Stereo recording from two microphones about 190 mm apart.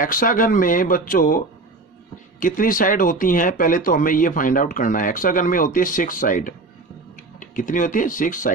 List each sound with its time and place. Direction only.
0.0 s speech: 45° left (ahead or behind)
2.4 s speech: 45° left (ahead or behind)